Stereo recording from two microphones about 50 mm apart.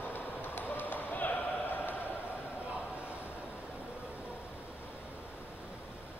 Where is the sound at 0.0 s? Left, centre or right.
Left.